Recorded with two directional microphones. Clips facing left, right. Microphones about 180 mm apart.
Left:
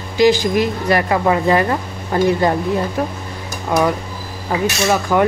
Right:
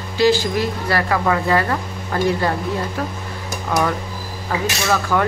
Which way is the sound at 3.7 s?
15° left (ahead or behind).